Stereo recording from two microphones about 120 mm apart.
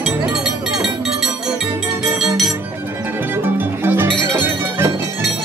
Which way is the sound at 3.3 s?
20° right (ahead or behind).